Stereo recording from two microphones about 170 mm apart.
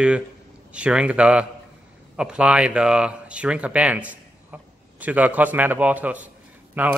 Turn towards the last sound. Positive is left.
turn(degrees=-10)  # may be behind; listen again after turning